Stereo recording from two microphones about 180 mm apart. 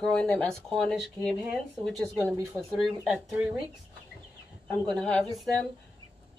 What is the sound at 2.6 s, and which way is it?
Speech, centre (ahead or behind).